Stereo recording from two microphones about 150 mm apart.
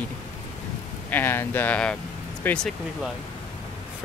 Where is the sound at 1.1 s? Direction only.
15° left (ahead or behind).